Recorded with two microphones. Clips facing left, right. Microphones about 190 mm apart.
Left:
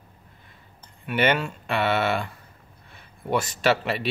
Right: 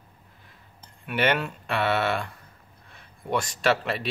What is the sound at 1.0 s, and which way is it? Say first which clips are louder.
Speech: left 2 dB; centre (ahead or behind).